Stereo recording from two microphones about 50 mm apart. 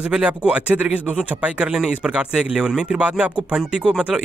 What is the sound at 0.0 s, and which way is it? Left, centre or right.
Speech, right.